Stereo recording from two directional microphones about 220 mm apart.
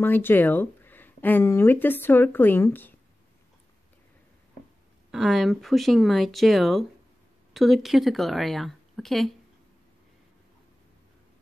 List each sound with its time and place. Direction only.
0.0 s speech: 10° left (ahead or behind)
5.1 s speech: centre (ahead or behind)